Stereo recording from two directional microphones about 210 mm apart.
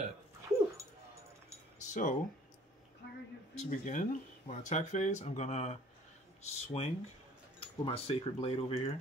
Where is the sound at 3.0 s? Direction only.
55° left (ahead or behind).